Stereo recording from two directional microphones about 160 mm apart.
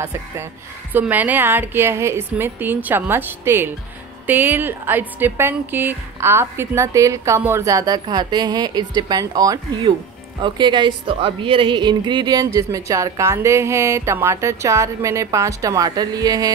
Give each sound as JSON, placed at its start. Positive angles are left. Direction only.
{"t": 0.9, "sound": "a woman's voice", "side_deg": -10}